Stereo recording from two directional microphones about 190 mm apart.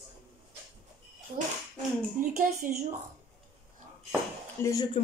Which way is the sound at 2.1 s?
45° right (ahead or behind).